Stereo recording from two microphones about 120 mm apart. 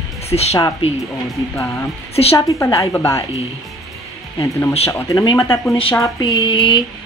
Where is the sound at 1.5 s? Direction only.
25° left (ahead or behind).